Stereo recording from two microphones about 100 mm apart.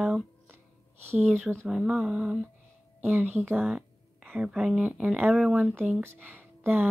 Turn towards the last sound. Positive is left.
turn(degrees=-20)  # may be behind; listen again after turning